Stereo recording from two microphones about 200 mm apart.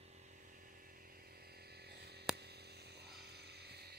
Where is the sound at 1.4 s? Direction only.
50° right (ahead or behind).